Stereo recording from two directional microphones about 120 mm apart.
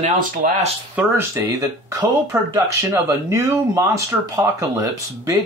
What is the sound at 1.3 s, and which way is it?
Speech, 25° right (ahead or behind).